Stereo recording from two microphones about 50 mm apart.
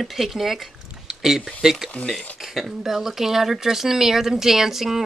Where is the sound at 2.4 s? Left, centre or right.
Centre.